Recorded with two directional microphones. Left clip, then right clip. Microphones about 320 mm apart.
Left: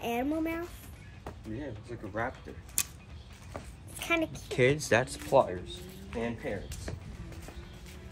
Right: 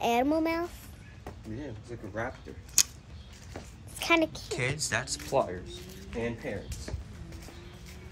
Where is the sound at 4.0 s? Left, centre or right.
Right.